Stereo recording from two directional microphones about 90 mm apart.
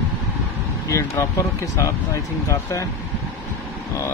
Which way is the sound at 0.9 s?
35° left (ahead or behind).